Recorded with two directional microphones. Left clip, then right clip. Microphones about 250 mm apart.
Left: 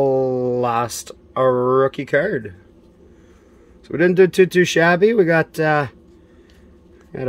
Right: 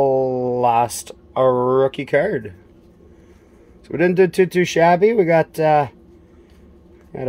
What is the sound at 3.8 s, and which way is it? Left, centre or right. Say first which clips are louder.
Speech: left 1 dB; centre.